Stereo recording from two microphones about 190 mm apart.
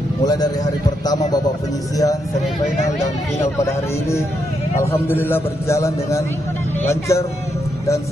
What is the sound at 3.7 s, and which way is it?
A man's voice, 15° left (ahead or behind).